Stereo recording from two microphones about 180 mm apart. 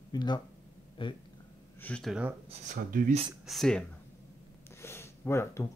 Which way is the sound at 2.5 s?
40° right (ahead or behind).